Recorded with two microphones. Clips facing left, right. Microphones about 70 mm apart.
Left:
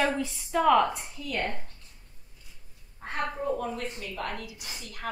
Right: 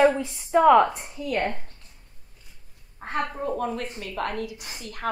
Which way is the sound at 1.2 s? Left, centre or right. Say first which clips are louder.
Right 6 dB; right.